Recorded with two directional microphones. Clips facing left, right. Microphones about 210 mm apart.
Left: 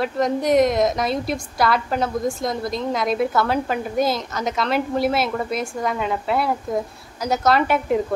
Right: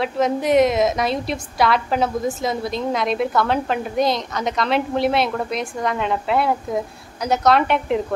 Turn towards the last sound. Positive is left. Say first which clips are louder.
# right 1 dB
turn(degrees=0)  # may be behind; listen again after turning